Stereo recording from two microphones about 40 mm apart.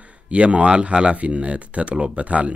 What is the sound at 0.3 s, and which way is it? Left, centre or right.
Speech, right.